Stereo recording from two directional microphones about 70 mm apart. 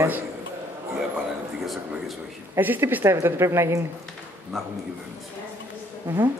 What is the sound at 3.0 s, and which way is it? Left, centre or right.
Speech, right.